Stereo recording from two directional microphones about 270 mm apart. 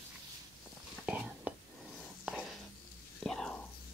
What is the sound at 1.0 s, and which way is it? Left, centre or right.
Whispering, centre.